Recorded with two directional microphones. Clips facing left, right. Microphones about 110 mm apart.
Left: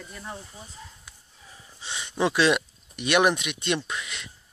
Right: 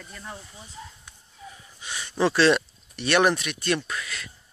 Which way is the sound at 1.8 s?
20° left (ahead or behind).